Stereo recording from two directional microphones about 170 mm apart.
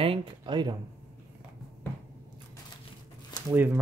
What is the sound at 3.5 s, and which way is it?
Speech, 10° right (ahead or behind).